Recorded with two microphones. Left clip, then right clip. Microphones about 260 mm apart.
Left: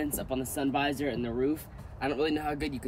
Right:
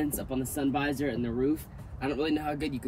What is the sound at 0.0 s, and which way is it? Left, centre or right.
Speech, centre.